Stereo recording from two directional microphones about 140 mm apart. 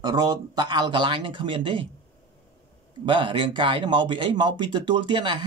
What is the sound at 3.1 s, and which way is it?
Speech, 35° right (ahead or behind).